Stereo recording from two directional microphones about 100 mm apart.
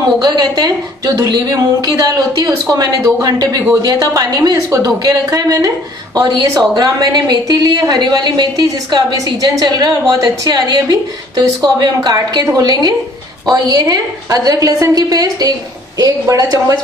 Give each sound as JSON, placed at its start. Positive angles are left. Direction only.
{"t": 0.2, "sound": "a woman's voice", "side_deg": -40}